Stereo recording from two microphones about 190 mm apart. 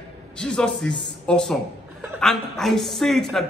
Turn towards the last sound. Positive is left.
turn(degrees=0)  # may be behind; listen again after turning